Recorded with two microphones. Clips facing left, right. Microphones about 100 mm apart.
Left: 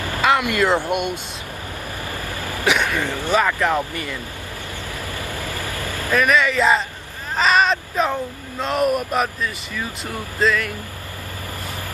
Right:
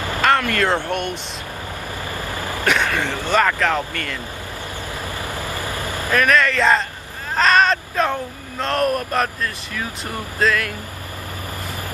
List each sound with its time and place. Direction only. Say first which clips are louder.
0.2 s vehicle: even; 10° left (ahead or behind)
0.7 s speech: left 2 dB; 10° left (ahead or behind)
2.6 s a sound: even; 10° left (ahead or behind)
3.1 s speech: right 1 dB; 15° left (ahead or behind)
5.3 s vehicle: right 2 dB; 20° right (ahead or behind)
6.1 s speech: even; 5° left (ahead or behind)